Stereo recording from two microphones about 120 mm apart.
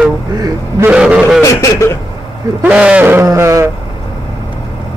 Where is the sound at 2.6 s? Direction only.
10° right (ahead or behind).